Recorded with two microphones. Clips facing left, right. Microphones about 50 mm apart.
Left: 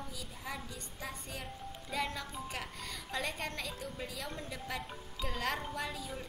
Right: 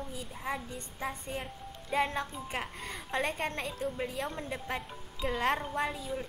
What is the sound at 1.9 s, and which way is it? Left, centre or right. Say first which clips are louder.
A woman's voice: right 7 dB; right.